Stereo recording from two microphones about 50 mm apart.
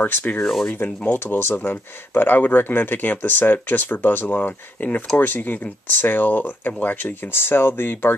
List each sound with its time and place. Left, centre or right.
0.0 s speech: left